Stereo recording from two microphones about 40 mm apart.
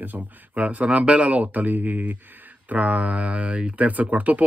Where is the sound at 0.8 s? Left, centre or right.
Right.